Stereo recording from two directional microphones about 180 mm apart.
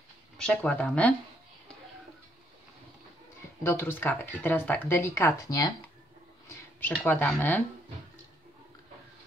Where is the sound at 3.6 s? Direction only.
15° left (ahead or behind).